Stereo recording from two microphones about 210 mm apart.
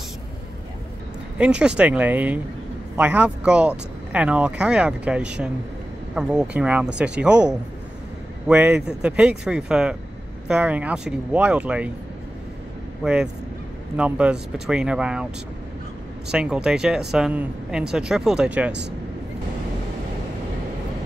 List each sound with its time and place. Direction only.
1.4 s speech: 5° right (ahead or behind)
13.0 s speech: 5° right (ahead or behind)
16.3 s speech: 5° right (ahead or behind)
18.7 s speech: 55° right (ahead or behind)